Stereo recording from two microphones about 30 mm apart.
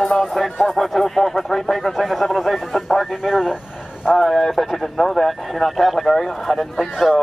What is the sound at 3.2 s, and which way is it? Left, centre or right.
Speech, centre.